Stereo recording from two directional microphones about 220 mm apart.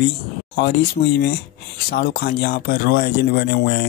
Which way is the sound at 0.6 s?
50° left (ahead or behind).